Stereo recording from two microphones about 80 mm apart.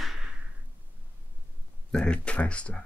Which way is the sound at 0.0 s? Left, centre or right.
Centre.